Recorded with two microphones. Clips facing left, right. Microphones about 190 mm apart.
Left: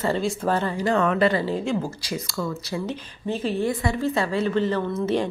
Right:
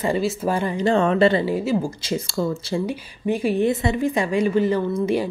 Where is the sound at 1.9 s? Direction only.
25° right (ahead or behind).